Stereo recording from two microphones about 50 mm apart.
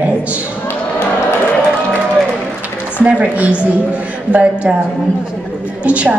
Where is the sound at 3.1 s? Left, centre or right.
Right.